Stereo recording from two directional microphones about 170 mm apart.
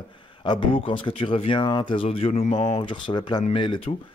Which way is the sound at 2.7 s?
30° left (ahead or behind).